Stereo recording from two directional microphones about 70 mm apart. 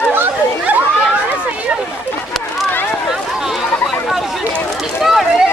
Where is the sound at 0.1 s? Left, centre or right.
Right.